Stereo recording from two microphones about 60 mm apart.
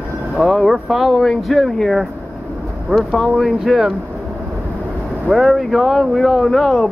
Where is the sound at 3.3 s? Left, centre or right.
Centre.